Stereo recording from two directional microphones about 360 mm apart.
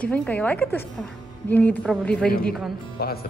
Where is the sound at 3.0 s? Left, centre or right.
Left.